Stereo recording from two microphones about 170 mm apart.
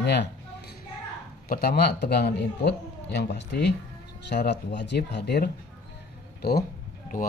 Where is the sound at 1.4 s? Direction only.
60° left (ahead or behind).